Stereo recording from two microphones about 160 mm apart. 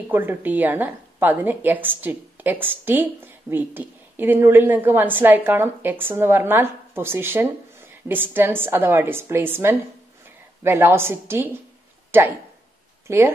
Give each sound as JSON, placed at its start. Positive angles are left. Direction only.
{"t": 0.1, "sound": "a woman's voice", "side_deg": -15}